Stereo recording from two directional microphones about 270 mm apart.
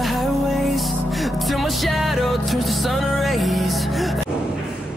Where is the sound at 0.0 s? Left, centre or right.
Centre.